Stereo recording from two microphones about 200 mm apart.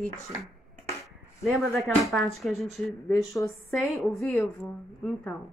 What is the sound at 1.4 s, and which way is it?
Speech, centre (ahead or behind).